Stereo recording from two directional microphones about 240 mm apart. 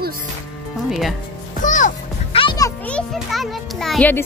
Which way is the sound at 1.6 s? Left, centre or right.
Left.